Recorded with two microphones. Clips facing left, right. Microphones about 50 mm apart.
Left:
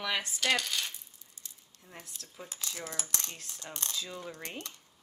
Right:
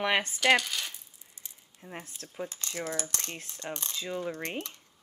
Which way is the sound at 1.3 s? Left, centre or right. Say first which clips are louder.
Right 2 dB; right.